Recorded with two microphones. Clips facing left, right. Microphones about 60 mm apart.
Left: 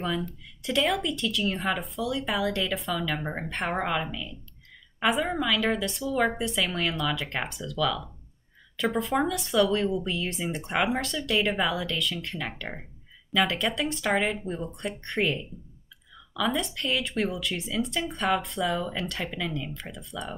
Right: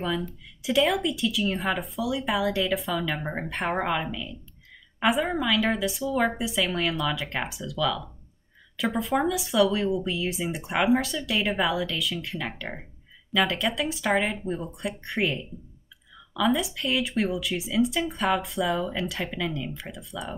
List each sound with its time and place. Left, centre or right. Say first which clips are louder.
0.0 s speech: right 1 dB; centre